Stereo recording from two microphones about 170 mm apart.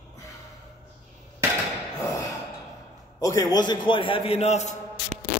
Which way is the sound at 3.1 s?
20° left (ahead or behind).